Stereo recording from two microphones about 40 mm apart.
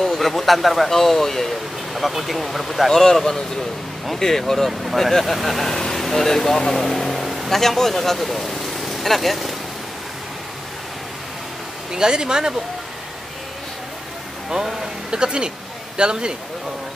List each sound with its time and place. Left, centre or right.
0.0 s speech: centre
11.9 s speech: centre
14.5 s speech: centre